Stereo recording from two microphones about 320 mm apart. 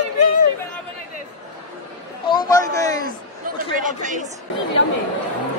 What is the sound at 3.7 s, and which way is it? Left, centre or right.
Speech, right.